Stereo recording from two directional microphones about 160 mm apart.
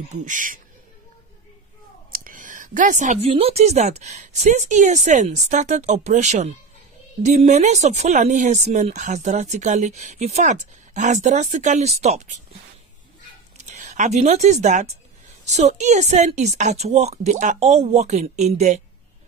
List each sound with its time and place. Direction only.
0.1 s speech: 50° right (ahead or behind)
2.0 s a sound: 60° right (ahead or behind)
3.3 s speech: 40° right (ahead or behind)
13.6 s speech: 50° right (ahead or behind)